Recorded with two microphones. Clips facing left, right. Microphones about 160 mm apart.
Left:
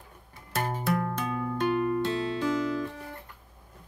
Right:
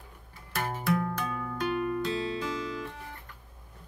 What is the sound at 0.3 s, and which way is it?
Music, 30° left (ahead or behind).